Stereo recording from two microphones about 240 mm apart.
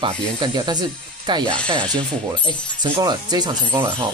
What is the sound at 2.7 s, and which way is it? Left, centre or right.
Speech, centre.